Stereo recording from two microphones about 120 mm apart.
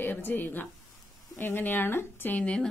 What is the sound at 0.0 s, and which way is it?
Speech, 15° left (ahead or behind).